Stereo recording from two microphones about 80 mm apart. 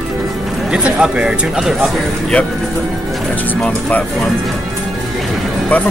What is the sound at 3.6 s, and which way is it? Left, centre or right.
Speech, centre.